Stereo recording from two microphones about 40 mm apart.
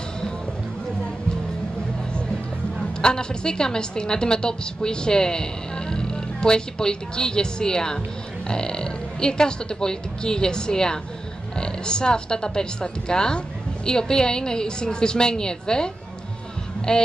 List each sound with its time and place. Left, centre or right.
3.0 s a woman's voice: centre